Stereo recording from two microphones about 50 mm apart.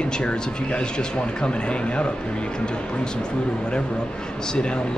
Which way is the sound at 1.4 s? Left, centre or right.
Centre.